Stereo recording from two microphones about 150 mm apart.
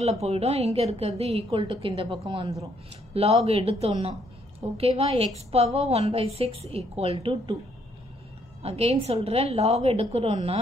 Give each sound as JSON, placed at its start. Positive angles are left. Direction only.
{"t": 0.0, "sound": "a woman's voice", "side_deg": -45}
{"t": 8.6, "sound": "a woman's voice", "side_deg": -40}